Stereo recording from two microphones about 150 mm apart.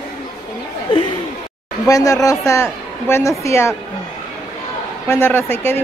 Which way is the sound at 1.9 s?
20° left (ahead or behind).